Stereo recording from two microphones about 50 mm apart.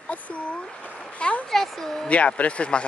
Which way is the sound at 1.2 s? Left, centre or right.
Left.